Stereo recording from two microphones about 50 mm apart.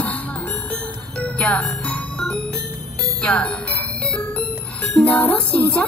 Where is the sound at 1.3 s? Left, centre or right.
Centre.